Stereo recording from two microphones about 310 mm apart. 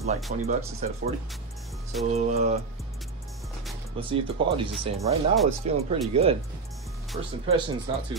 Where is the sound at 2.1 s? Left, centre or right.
Right.